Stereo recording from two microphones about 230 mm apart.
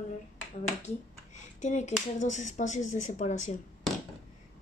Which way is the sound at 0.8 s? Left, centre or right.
Left.